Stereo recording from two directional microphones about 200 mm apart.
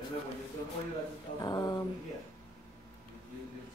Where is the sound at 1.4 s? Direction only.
20° left (ahead or behind).